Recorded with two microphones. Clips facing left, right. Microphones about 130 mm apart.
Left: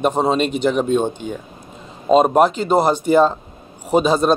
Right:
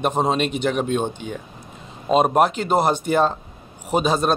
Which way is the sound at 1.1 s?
45° left (ahead or behind).